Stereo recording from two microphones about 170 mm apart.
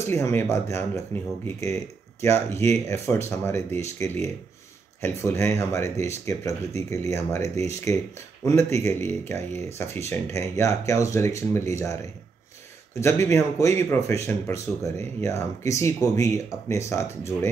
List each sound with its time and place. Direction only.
0.1 s speech: 15° left (ahead or behind)
2.2 s speech: 15° left (ahead or behind)
13.0 s speech: 15° left (ahead or behind)